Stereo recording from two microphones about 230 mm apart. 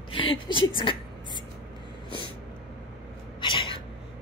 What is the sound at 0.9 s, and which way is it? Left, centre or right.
Speech, left.